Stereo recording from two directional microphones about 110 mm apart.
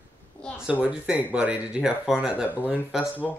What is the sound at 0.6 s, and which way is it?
Speech, 10° right (ahead or behind).